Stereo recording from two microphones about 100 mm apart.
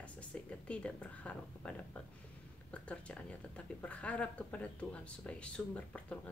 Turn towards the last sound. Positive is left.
turn(degrees=10)  # may be behind; listen again after turning